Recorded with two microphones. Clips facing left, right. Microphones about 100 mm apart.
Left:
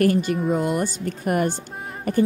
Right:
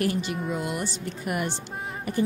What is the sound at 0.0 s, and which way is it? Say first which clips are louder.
A woman's voice: left 7 dB; 45° left (ahead or behind).